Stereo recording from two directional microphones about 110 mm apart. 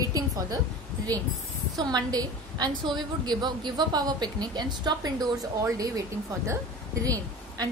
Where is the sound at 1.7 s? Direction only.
35° right (ahead or behind).